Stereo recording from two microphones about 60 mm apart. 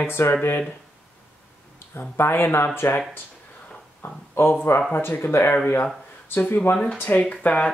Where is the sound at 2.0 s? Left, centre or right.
Left.